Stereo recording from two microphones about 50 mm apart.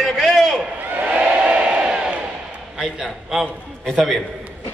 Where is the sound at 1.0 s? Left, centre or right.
Right.